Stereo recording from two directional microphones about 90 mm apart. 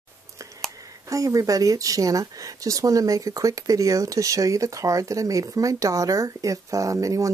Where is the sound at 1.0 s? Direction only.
40° right (ahead or behind).